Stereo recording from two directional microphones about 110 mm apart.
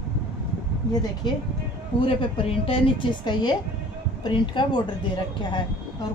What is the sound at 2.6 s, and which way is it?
Speech, 50° left (ahead or behind).